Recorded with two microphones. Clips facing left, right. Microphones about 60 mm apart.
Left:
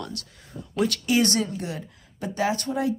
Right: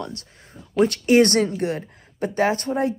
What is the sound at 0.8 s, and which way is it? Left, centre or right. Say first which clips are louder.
Speech: right 7 dB; right.